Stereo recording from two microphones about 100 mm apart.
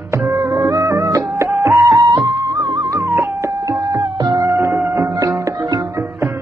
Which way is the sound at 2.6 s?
50° right (ahead or behind).